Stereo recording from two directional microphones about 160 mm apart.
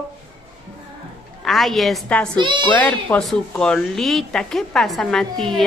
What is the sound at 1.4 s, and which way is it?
Speech, centre (ahead or behind).